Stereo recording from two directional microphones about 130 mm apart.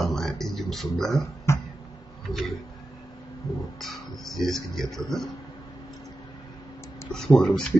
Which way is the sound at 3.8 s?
Centre (ahead or behind).